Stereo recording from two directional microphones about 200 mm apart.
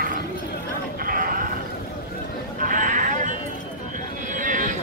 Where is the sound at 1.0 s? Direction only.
45° right (ahead or behind).